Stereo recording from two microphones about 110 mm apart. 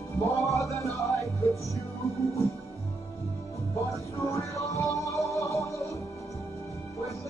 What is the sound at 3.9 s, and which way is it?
Music, 30° left (ahead or behind).